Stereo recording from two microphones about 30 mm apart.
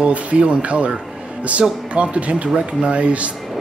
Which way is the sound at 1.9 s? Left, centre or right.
Right.